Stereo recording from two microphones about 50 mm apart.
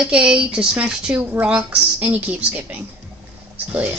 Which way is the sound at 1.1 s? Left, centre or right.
Right.